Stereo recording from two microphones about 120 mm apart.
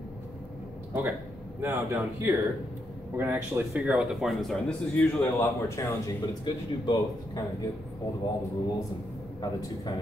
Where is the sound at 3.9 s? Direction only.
Centre (ahead or behind).